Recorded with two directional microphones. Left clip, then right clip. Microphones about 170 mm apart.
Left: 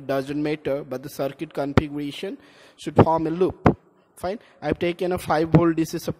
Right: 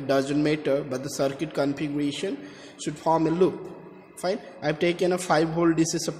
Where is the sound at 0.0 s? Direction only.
50° left (ahead or behind).